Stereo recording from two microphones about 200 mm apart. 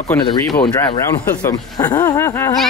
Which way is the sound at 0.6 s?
20° left (ahead or behind).